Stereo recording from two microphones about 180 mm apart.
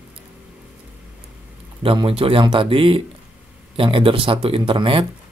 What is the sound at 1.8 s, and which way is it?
Speech, 30° right (ahead or behind).